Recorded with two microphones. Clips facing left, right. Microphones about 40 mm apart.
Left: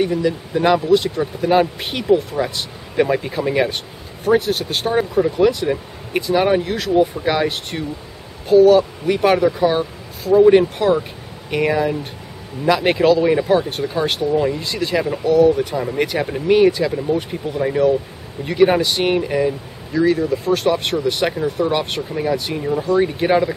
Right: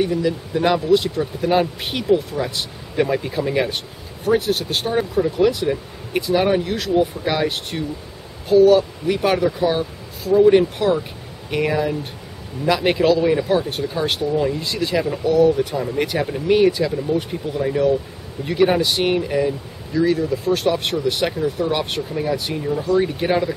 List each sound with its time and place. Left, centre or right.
0.0 s speech: centre
10.3 s speech: centre
11.5 s speech: centre
15.8 s speech: centre
18.4 s speech: centre